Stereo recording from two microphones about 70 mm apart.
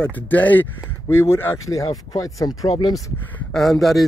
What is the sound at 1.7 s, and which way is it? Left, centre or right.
Speech, left.